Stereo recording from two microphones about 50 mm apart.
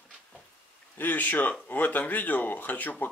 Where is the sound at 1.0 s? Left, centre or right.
Left.